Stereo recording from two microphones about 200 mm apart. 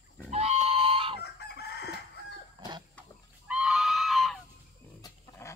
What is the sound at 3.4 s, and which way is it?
Goose, 5° right (ahead or behind).